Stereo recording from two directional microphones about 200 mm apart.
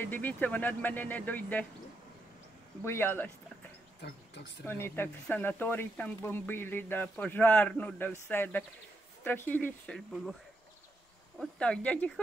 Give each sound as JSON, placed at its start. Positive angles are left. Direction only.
{"t": 0.0, "sound": "speech", "side_deg": 10}
{"t": 2.8, "sound": "speech", "side_deg": 10}
{"t": 4.0, "sound": "speech", "side_deg": 55}
{"t": 4.6, "sound": "speech", "side_deg": 10}
{"t": 11.3, "sound": "speech", "side_deg": 5}